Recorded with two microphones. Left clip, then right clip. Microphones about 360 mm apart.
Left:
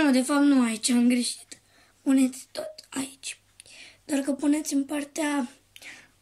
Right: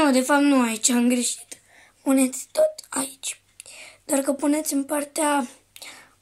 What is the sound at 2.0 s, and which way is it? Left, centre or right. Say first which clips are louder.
Whispering: right 3 dB; centre.